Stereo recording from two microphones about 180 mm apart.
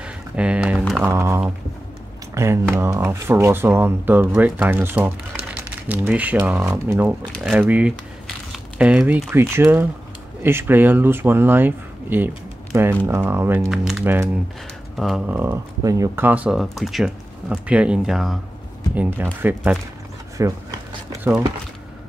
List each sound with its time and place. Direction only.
0.0 s a sound: 5° right (ahead or behind)
0.9 s speech: 15° right (ahead or behind)
18.9 s speech: 10° right (ahead or behind)